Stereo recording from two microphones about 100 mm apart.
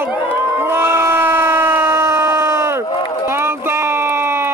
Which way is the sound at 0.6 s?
25° right (ahead or behind).